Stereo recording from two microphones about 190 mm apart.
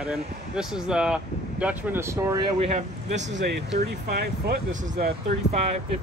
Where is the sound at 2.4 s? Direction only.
30° right (ahead or behind).